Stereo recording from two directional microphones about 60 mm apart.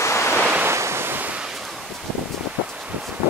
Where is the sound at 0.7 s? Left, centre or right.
Right.